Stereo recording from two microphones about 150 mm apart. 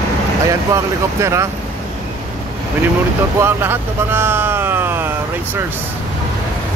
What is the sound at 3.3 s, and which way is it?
Speech, 15° right (ahead or behind).